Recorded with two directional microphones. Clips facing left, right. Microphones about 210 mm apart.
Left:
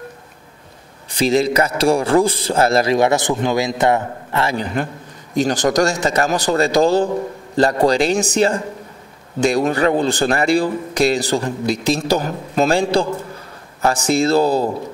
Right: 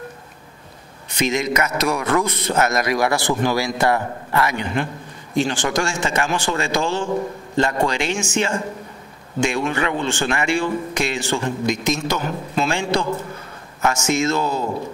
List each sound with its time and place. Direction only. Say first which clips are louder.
1.1 s a man's voice: left 5 dB; 35° left (ahead or behind)